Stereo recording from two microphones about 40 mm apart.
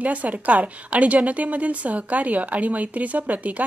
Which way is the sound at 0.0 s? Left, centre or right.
Right.